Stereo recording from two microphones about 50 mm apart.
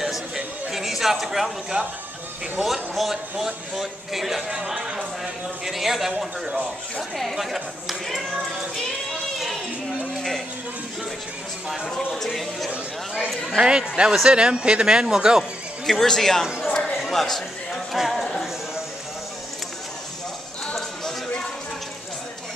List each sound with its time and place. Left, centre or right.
0.7 s speech: centre
7.0 s speech: centre
12.1 s speech: centre
13.6 s speech: centre
15.9 s speech: centre
16.7 s a sound: centre
17.9 s speech: centre